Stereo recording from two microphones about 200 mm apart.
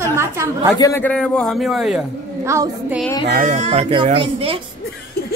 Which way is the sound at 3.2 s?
40° right (ahead or behind).